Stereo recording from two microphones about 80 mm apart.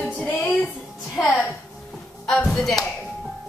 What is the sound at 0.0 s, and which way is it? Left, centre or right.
Music, centre.